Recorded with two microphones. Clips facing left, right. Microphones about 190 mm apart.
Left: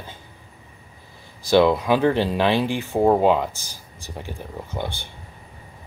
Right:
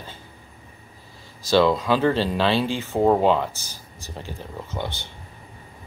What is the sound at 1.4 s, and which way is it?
Speech, 15° left (ahead or behind).